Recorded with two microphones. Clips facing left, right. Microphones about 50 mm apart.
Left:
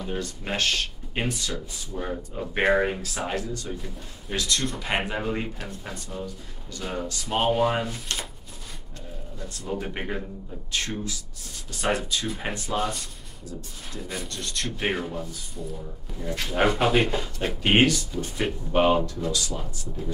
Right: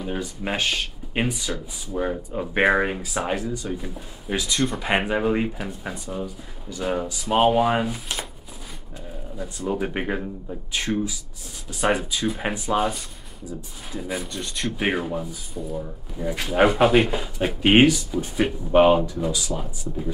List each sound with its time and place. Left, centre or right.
0.0 s speech: centre
9.4 s speech: centre